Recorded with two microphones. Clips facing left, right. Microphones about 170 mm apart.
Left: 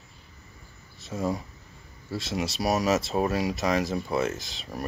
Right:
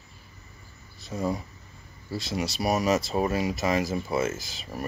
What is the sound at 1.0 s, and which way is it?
Speech, centre (ahead or behind).